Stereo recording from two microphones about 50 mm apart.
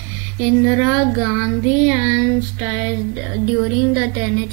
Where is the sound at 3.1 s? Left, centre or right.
Centre.